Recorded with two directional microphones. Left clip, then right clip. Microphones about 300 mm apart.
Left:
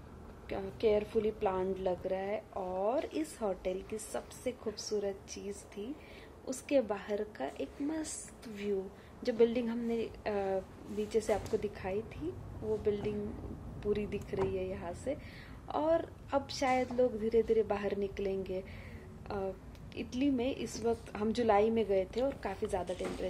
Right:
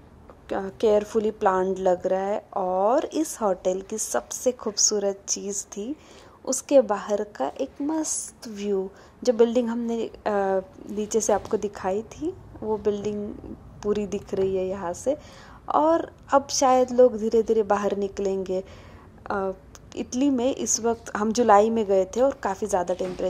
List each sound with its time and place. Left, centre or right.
0.5 s a woman's voice: centre
9.2 s a woman's voice: centre